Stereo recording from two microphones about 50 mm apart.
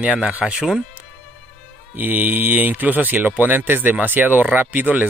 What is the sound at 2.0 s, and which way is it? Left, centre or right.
Speech, right.